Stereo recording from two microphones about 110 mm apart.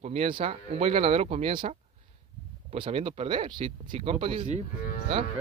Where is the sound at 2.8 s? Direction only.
55° right (ahead or behind).